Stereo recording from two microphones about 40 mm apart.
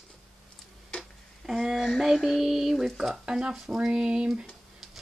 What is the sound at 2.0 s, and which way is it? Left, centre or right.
Music, centre.